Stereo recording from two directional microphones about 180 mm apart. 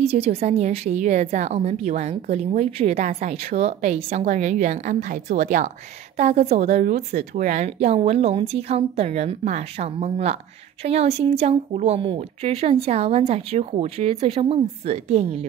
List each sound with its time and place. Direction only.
0.0 s a woman's voice: 35° right (ahead or behind)